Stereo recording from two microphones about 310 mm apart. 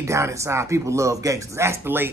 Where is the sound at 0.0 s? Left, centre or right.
Centre.